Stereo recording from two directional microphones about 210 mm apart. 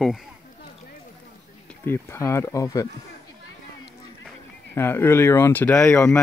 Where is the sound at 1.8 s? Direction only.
10° left (ahead or behind).